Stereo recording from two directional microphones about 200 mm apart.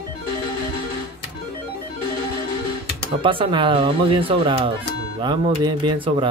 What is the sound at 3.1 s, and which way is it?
Speech, 25° right (ahead or behind).